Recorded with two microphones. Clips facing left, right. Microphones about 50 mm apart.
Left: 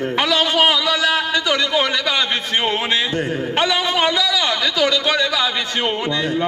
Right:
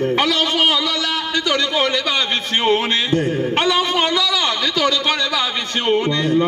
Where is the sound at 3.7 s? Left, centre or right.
Left.